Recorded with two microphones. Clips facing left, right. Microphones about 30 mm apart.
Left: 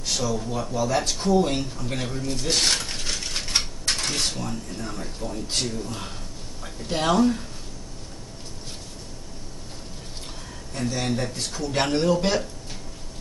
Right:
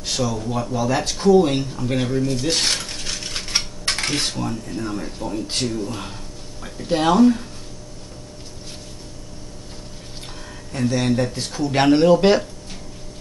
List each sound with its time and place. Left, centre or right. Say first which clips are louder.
0.0 s a sound: right 4 dB; right
0.4 s speech: right 3 dB; centre
2.2 s speech: right 3 dB; centre
2.9 s a sound: right 1 dB; centre
3.3 s dishes: right 1 dB; centre
3.8 s cutlery: right 3 dB; right
4.4 s speech: right 5 dB; right
10.7 s speech: right 6 dB; centre